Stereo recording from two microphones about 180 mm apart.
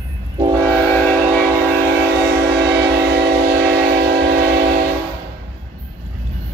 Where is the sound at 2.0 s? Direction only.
70° right (ahead or behind).